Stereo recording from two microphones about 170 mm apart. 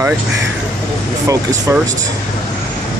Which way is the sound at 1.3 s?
20° right (ahead or behind).